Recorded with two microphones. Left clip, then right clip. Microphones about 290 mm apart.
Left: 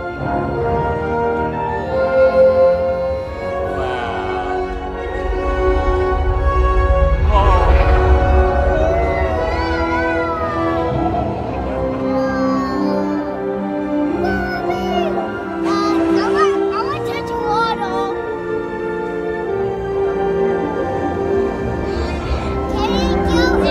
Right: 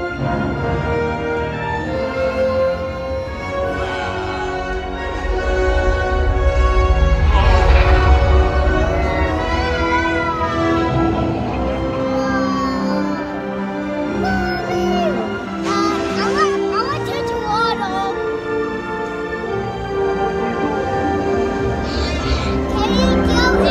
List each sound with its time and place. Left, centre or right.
2.1 s music: centre
12.4 s music: centre
15.7 s music: centre
22.8 s music: centre